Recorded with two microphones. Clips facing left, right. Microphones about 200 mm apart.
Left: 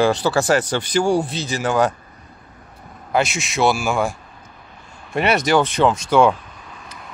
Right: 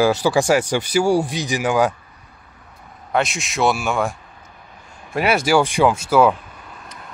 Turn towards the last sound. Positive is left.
turn(degrees=-5)  # may be behind; listen again after turning